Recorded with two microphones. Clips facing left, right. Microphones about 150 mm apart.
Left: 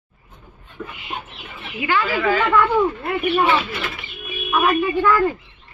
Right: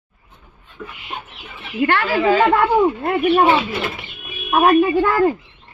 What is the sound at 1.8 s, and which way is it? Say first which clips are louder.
Speech: right 3 dB; 65° right (ahead or behind).